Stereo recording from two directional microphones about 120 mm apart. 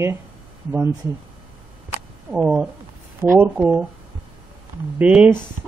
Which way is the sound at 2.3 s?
10° right (ahead or behind).